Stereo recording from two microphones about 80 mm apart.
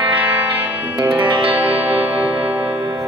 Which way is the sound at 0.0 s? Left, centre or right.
Right.